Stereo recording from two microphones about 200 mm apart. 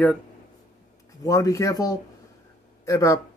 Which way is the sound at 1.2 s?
15° left (ahead or behind).